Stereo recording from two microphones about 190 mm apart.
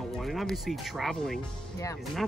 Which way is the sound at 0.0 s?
Centre (ahead or behind).